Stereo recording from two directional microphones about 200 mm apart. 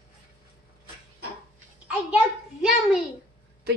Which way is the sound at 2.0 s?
5° right (ahead or behind).